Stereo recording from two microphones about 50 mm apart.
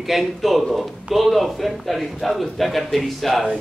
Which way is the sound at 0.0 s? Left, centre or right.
Centre.